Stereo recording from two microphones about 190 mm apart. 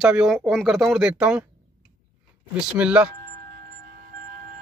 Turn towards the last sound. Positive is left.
turn(degrees=-5)  # may be behind; listen again after turning